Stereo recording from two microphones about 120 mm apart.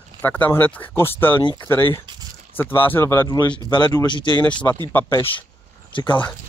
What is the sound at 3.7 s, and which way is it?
Speech, 40° left (ahead or behind).